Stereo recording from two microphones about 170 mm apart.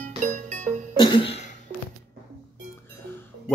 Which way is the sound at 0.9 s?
25° left (ahead or behind).